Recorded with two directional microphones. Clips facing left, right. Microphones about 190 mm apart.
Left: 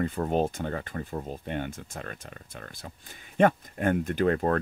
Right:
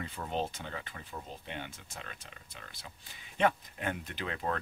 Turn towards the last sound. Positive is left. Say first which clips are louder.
# left 12 dB
turn(degrees=50)  # may be behind; listen again after turning